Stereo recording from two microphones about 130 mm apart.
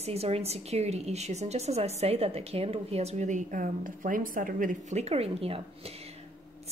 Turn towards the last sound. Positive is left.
turn(degrees=-50)  # may be behind; listen again after turning